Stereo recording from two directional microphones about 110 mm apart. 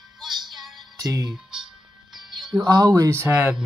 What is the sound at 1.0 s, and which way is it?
Speech, 35° right (ahead or behind).